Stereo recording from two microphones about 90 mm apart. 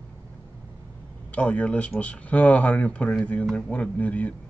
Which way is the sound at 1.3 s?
15° left (ahead or behind).